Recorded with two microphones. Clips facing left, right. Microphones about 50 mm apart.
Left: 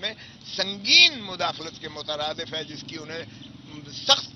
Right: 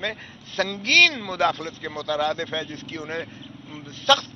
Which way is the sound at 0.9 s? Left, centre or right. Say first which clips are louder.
Right 3 dB; centre.